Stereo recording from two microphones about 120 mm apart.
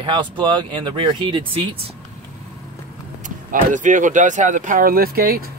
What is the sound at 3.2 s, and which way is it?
Speech, 90° right.